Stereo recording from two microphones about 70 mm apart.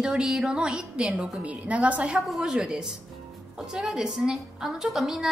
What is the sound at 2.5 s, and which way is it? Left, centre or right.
A woman's voice, centre.